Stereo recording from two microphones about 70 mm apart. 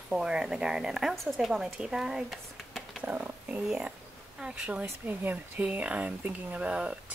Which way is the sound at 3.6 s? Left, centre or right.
Centre.